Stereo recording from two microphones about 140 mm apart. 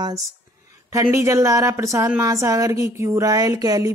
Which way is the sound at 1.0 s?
20° right (ahead or behind).